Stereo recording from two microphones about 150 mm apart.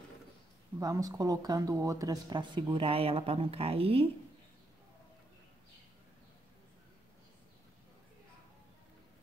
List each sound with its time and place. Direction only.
0.7 s speech: 20° right (ahead or behind); by 4.1 s 40° right (ahead or behind)